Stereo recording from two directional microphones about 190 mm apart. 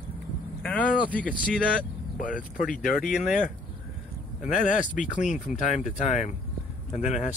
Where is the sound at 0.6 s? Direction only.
5° left (ahead or behind).